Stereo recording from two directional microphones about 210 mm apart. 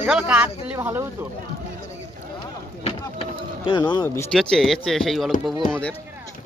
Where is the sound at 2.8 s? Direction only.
25° left (ahead or behind).